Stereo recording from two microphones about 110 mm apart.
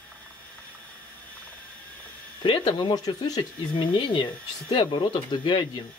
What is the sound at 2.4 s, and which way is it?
Speech, 45° left (ahead or behind).